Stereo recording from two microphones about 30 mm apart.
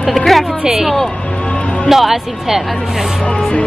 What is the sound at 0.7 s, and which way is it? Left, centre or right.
A woman's voice, centre.